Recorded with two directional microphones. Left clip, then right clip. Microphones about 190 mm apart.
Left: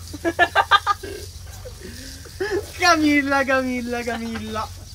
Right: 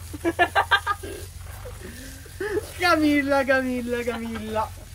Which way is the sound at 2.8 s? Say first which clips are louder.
Left 4 dB; 10° left (ahead or behind).